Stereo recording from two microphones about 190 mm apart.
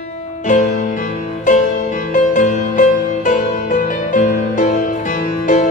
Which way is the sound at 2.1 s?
40° left (ahead or behind).